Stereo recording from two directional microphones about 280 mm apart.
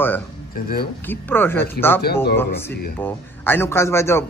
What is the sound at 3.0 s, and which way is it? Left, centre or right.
Speech, centre.